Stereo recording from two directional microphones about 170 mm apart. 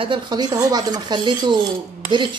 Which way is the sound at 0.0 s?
25° right (ahead or behind).